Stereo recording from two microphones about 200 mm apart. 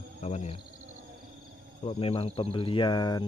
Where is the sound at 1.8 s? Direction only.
30° left (ahead or behind).